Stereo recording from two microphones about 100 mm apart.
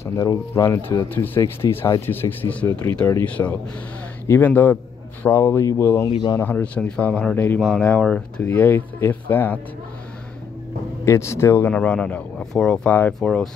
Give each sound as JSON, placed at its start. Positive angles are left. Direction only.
{"t": 0.0, "sound": "speech", "side_deg": 35}
{"t": 1.1, "sound": "speech", "side_deg": 20}
{"t": 3.4, "sound": "speech", "side_deg": 25}
{"t": 6.0, "sound": "speech", "side_deg": 45}
{"t": 6.4, "sound": "speech", "side_deg": 15}
{"t": 11.1, "sound": "speech", "side_deg": 25}